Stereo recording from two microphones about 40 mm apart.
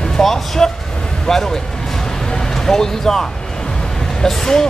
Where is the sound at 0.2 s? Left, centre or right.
Centre.